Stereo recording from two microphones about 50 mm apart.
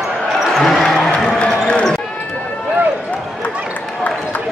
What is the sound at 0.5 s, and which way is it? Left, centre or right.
Basketball bounce, centre.